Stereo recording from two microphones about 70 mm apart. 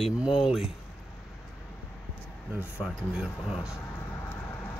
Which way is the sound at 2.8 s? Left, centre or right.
Centre.